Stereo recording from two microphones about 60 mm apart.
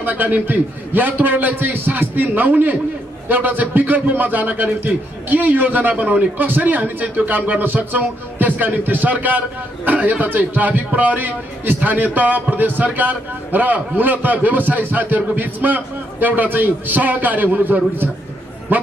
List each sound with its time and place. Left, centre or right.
0.0 s a man's voice: right